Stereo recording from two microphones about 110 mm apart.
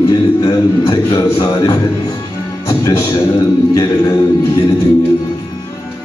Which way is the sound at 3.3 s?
35° left (ahead or behind).